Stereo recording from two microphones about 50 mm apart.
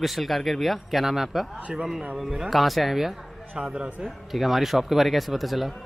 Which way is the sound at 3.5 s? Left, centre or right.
Centre.